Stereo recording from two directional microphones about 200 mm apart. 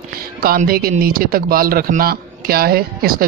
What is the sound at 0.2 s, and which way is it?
Speech, 50° right (ahead or behind).